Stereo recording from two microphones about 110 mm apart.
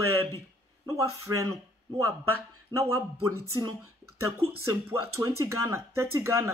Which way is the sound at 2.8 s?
30° right (ahead or behind).